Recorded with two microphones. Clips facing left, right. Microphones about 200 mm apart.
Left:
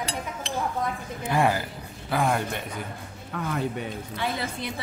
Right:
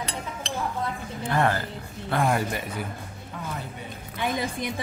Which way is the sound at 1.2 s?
10° left (ahead or behind).